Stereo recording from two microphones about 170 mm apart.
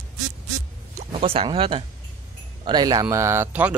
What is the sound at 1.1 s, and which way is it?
Speech, 35° right (ahead or behind).